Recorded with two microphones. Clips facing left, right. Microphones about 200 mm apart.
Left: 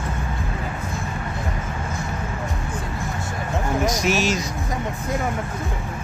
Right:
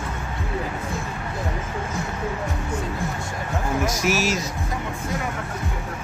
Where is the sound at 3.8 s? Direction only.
5° right (ahead or behind).